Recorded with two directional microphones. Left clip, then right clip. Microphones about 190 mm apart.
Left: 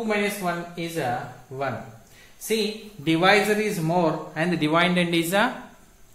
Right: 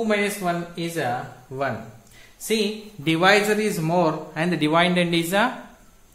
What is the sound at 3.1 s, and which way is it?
A man's voice, 25° right (ahead or behind).